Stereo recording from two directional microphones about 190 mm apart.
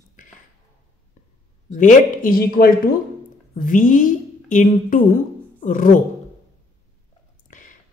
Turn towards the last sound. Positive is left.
turn(degrees=40)  # may be behind; listen again after turning